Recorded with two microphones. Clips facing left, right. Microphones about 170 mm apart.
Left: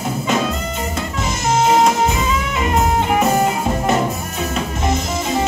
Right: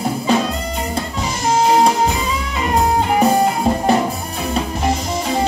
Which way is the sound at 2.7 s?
30° right (ahead or behind).